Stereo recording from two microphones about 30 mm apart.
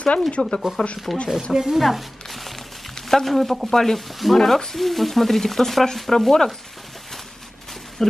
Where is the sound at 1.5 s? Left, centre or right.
Centre.